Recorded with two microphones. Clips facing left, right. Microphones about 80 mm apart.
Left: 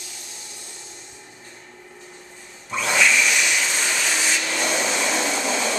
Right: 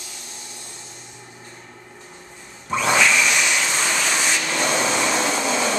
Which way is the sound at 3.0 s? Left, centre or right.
Centre.